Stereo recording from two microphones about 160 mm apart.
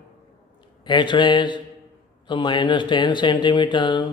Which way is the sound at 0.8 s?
30° left (ahead or behind).